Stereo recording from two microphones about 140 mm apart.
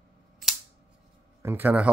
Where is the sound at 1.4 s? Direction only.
15° right (ahead or behind).